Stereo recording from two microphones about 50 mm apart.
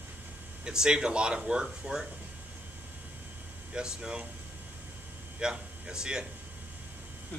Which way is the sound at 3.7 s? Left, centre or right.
Centre.